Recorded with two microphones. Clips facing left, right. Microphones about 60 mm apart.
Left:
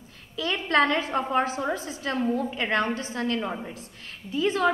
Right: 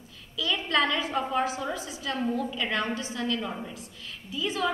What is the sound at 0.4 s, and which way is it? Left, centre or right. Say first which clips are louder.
A woman's voice: left 3 dB; left.